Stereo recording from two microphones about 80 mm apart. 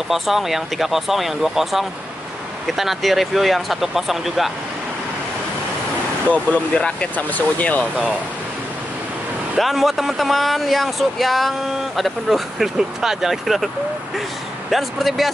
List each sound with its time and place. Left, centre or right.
0.1 s speech: centre
6.2 s speech: centre
9.6 s speech: centre
14.7 s speech: centre